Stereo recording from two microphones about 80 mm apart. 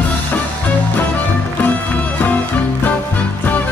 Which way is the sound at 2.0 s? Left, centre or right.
Left.